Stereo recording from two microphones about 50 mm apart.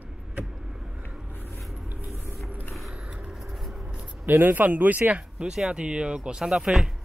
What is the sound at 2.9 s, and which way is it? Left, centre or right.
Vehicle, centre.